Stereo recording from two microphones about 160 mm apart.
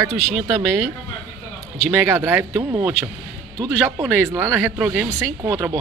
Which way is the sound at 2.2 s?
15° right (ahead or behind).